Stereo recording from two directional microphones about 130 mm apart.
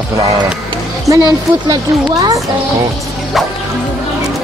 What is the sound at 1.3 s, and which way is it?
Speech, 30° right (ahead or behind).